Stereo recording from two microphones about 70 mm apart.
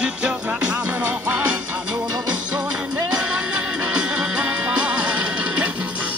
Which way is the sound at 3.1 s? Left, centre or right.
Centre.